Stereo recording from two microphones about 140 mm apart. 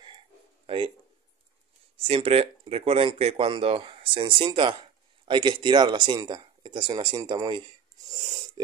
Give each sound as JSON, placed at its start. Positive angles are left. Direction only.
{"t": 0.7, "sound": "speech", "side_deg": -40}
{"t": 2.0, "sound": "speech", "side_deg": -45}